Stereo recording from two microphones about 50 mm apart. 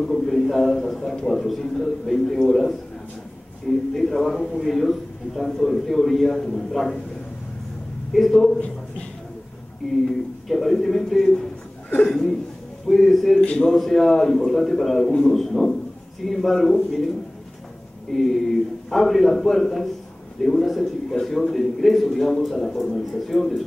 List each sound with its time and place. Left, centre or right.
0.0 s a sound: centre
1.1 s a man's voice: centre
3.9 s a man's voice: centre
8.1 s a man's voice: centre
8.5 s a man's voice: left
10.0 s a man's voice: centre
13.4 s a man's voice: left
13.7 s a man's voice: centre
18.1 s a man's voice: centre